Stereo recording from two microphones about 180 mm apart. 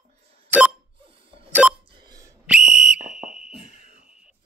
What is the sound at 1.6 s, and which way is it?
Telephone dialing, 5° right (ahead or behind).